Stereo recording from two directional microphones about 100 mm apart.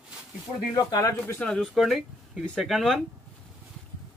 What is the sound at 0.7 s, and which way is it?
Speech, 40° left (ahead or behind).